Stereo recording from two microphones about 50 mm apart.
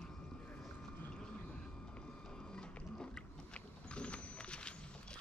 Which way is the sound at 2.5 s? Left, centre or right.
Centre.